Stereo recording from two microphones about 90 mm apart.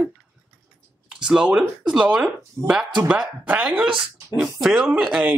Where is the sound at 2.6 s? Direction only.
25° right (ahead or behind).